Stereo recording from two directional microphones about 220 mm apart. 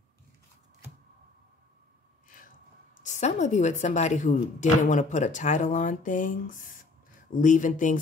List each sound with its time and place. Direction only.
2.2 s gasp: 40° left (ahead or behind)
3.0 s a woman's voice: 35° left (ahead or behind)